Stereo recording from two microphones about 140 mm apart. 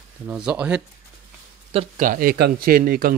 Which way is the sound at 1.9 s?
75° right (ahead or behind).